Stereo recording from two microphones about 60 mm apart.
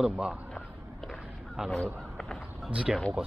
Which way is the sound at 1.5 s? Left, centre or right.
Centre.